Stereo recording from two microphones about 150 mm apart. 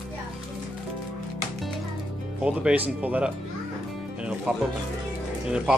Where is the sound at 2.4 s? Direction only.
5° right (ahead or behind).